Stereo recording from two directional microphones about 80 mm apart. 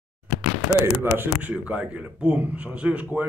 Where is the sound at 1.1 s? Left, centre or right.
Right.